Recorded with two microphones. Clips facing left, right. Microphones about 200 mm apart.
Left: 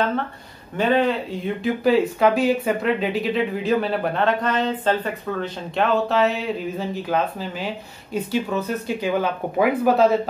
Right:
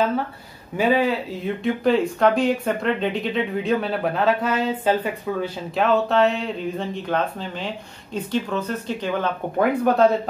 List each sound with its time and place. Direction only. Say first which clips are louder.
0.7 s speech: even; 5° right (ahead or behind)